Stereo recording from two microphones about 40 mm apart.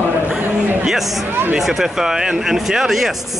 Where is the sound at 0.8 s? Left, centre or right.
Centre.